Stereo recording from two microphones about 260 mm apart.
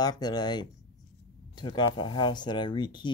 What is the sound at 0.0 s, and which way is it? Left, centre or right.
Speech, centre.